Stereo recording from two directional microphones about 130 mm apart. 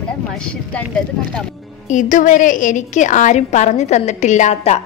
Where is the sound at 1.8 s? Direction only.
75° left (ahead or behind).